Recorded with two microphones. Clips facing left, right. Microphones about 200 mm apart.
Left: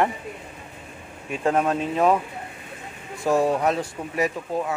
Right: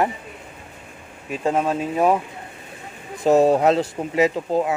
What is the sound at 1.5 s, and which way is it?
Speech, 10° right (ahead or behind).